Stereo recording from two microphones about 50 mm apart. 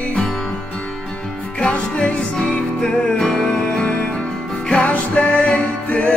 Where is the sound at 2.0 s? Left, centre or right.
Left.